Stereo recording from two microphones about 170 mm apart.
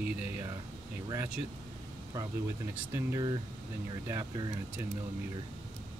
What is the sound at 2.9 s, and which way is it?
Speech, 20° right (ahead or behind).